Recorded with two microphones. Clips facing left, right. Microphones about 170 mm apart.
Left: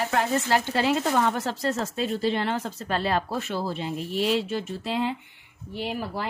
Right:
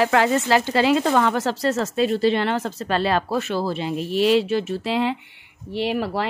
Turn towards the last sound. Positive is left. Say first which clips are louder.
# right 7 dB
turn(degrees=-75)  # may be behind; listen again after turning